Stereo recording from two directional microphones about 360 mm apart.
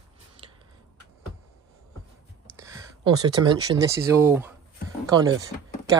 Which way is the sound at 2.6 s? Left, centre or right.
Centre.